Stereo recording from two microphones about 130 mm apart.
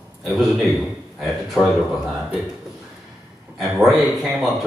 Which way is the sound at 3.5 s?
Centre (ahead or behind).